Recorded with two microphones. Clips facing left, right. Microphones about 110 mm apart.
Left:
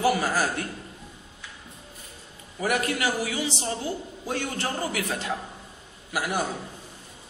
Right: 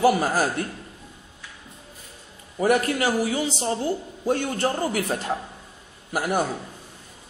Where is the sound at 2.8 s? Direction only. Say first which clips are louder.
Right 4 dB; 40° right (ahead or behind).